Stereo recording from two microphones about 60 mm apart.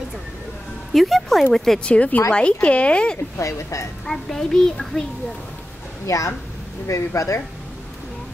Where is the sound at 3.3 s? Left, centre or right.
Left.